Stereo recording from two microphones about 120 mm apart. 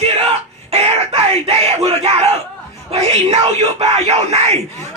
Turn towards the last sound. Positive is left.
turn(degrees=-65)  # may be behind; listen again after turning